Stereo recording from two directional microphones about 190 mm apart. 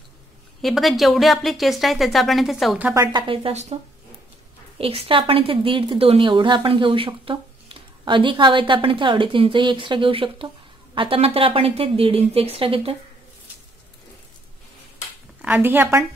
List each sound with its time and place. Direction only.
0.6 s a woman's voice: centre (ahead or behind)
2.9 s a woman's voice: 20° right (ahead or behind)
4.7 s a woman's voice: 30° right (ahead or behind)
15.4 s a woman's voice: 10° right (ahead or behind)